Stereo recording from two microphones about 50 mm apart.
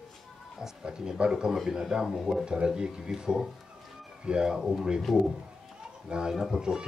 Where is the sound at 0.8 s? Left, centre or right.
Centre.